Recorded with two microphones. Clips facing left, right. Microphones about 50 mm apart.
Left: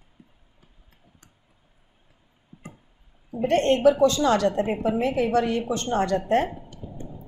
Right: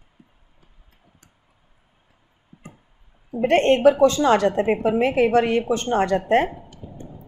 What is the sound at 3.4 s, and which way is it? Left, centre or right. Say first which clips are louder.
A woman's voice: right 3 dB; right.